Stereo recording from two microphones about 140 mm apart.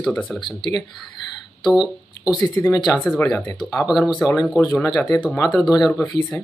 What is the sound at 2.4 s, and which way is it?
Speech, 20° left (ahead or behind).